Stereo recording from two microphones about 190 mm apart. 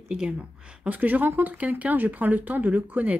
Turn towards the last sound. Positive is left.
turn(degrees=-10)  # may be behind; listen again after turning